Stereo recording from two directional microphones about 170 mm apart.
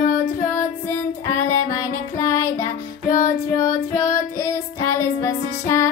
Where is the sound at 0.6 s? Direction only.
15° left (ahead or behind).